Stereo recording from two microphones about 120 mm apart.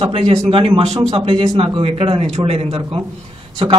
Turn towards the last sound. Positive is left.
turn(degrees=-55)  # may be behind; listen again after turning